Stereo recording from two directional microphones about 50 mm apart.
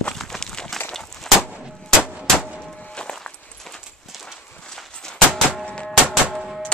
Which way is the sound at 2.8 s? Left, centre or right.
Left.